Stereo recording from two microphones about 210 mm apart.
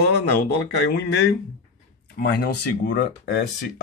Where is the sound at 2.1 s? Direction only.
50° left (ahead or behind).